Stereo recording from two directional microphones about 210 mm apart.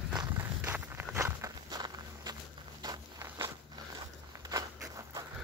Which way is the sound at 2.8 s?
15° right (ahead or behind).